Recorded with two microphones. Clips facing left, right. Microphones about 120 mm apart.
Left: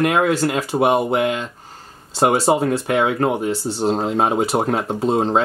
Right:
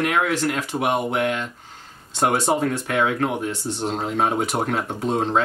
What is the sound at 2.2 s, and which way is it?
Speech, 30° left (ahead or behind).